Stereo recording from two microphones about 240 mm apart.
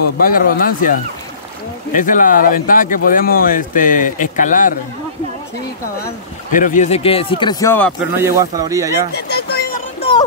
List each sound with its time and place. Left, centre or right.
0.2 s speech: left
2.0 s speech: left
6.5 s speech: left; by 7.9 s centre
8.2 s speech: centre
9.1 s a sound: left